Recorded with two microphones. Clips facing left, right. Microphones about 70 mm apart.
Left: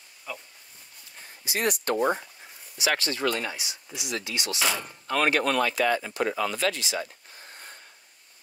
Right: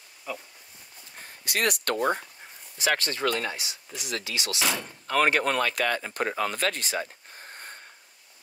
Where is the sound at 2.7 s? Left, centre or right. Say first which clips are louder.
Even; right.